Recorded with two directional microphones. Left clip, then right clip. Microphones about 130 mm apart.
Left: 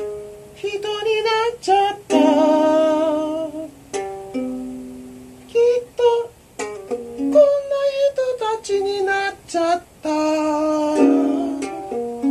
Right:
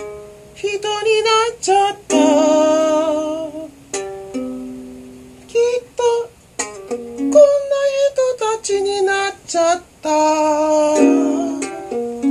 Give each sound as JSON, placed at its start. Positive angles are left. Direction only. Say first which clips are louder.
{"t": 0.6, "sound": "music", "louder": "right 4 dB", "side_deg": -20}
{"t": 5.5, "sound": "a sound", "louder": "even", "side_deg": -25}
{"t": 6.7, "sound": "music", "louder": "right 1 dB", "side_deg": -20}